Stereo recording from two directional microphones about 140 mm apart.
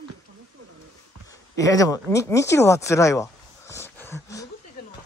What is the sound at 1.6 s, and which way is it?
Speech, 25° left (ahead or behind).